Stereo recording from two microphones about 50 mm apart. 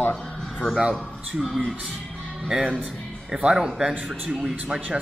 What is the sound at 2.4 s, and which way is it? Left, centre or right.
Speech, centre.